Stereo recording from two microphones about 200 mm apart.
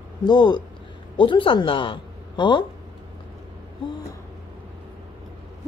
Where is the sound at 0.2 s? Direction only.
20° left (ahead or behind).